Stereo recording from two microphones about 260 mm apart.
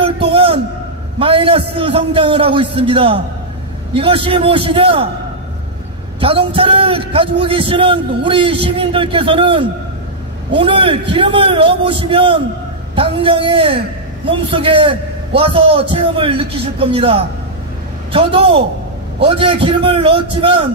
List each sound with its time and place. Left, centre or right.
0.0 s a sound: right
1.2 s a man's voice: centre
6.1 s a man's voice: centre